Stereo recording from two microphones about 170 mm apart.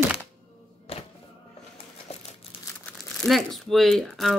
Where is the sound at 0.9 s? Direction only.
35° left (ahead or behind).